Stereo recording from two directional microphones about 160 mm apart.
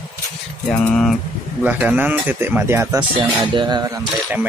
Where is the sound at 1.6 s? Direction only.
10° right (ahead or behind); by 3.9 s 30° right (ahead or behind).